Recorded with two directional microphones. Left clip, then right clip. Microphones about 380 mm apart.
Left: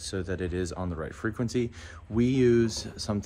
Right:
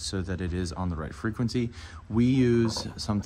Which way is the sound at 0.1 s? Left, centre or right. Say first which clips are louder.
Left 2 dB; centre.